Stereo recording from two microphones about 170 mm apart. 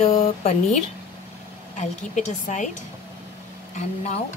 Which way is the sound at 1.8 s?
45° left (ahead or behind).